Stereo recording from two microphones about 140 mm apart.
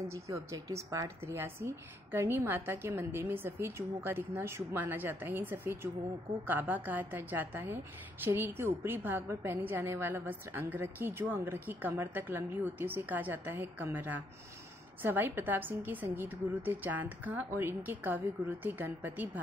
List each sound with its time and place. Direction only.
0.1 s a woman's voice: 20° right (ahead or behind)